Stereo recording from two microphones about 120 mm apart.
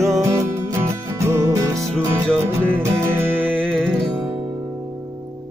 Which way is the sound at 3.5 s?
5° left (ahead or behind).